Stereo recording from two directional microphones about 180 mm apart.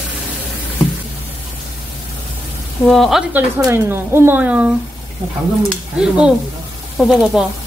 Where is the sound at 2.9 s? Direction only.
Centre (ahead or behind).